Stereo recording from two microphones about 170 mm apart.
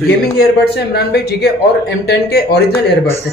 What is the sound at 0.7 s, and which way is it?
Speech, 70° left (ahead or behind).